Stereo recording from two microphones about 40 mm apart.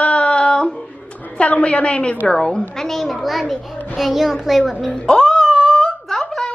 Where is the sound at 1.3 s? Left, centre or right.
Left; by 4.9 s centre.